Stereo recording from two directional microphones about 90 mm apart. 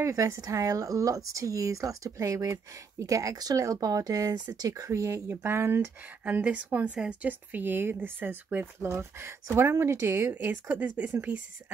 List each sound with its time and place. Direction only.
0.0 s speech: 35° right (ahead or behind)
6.2 s speech: 15° right (ahead or behind)
8.8 s speech: 30° right (ahead or behind)
10.3 s speech: 20° right (ahead or behind)